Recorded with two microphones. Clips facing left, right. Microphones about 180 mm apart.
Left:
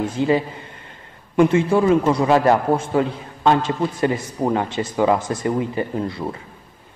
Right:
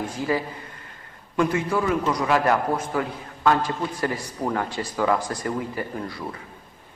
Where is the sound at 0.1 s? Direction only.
25° left (ahead or behind).